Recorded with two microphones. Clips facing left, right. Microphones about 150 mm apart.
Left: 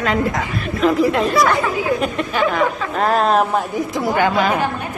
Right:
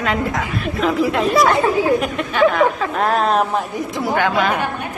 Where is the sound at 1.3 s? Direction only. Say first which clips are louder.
Right 2 dB; 25° right (ahead or behind).